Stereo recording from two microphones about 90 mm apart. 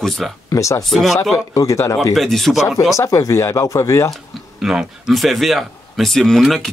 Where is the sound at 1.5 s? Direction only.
35° left (ahead or behind).